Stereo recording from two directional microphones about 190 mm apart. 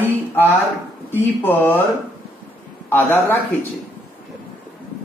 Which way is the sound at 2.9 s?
10° left (ahead or behind).